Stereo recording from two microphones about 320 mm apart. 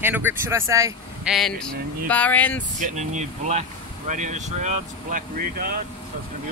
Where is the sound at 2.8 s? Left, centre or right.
Right.